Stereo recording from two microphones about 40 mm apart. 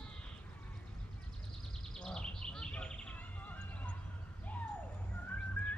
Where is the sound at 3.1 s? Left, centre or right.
Left.